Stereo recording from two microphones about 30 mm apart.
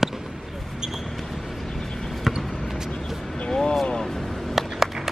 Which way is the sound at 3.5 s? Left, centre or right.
Left.